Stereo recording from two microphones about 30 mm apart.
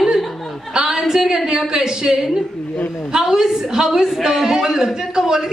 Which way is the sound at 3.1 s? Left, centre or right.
Right.